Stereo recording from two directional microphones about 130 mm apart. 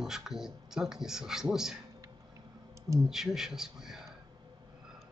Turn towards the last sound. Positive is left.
turn(degrees=-5)  # may be behind; listen again after turning